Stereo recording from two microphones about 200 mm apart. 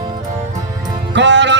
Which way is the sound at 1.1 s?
65° right (ahead or behind).